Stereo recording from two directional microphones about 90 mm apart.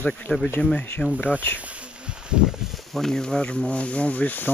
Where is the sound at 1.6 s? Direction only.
15° right (ahead or behind); by 4.4 s 15° left (ahead or behind).